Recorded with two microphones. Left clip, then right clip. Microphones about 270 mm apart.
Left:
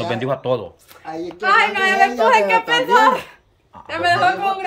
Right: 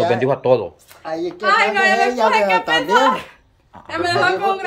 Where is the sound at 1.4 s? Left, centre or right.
Centre.